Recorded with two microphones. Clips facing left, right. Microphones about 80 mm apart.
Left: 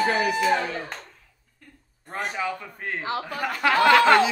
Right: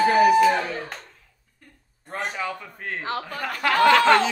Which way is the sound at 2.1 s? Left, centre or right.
Centre.